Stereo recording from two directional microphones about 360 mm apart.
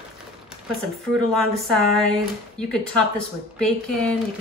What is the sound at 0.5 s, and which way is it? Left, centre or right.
A woman's voice, centre.